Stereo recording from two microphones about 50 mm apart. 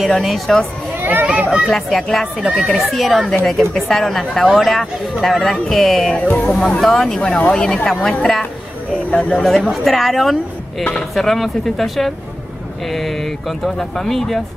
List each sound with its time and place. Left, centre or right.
0.2 s speech: centre
0.9 s a sound: right
1.2 s speech: right
1.7 s speech: centre
4.5 s speech: centre
5.2 s speech: centre
7.2 s speech: left
7.6 s speech: centre
9.6 s speech: centre